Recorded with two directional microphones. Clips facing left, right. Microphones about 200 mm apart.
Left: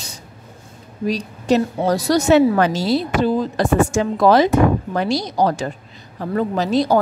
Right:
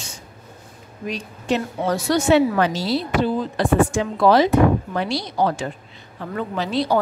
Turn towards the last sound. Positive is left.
turn(degrees=45)  # may be behind; listen again after turning